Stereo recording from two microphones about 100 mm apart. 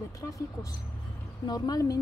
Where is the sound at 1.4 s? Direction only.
40° left (ahead or behind).